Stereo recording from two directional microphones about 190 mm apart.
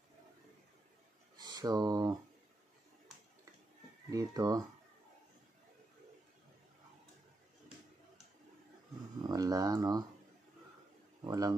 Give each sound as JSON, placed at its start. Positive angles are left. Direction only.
{"t": 1.4, "sound": "speech", "side_deg": -20}
{"t": 4.1, "sound": "speech", "side_deg": -15}
{"t": 9.3, "sound": "speech", "side_deg": -20}
{"t": 11.2, "sound": "speech", "side_deg": -20}